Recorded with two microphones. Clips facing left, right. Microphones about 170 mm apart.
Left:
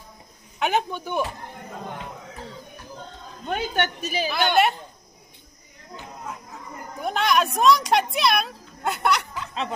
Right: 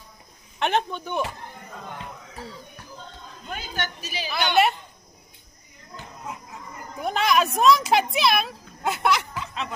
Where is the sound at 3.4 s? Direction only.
65° left (ahead or behind).